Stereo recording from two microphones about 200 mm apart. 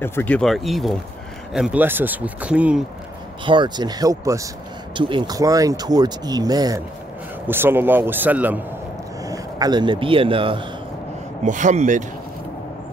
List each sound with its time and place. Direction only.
0.0 s speech: 10° left (ahead or behind); by 2.8 s 5° right (ahead or behind)
3.4 s speech: 25° right (ahead or behind)
11.4 s speech: 40° right (ahead or behind)